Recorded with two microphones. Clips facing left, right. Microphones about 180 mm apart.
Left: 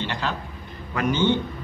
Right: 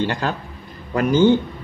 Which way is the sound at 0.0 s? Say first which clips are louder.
Right 6 dB; 45° right (ahead or behind).